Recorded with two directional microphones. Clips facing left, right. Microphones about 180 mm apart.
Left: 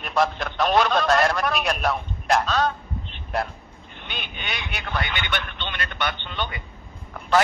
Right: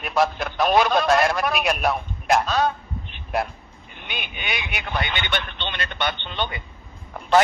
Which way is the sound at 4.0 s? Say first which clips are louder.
Right 2 dB; 10° right (ahead or behind).